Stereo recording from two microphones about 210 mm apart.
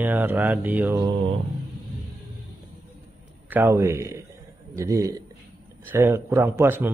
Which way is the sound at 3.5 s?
10° right (ahead or behind).